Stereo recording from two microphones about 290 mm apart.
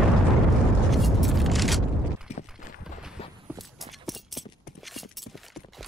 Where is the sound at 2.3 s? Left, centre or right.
Left.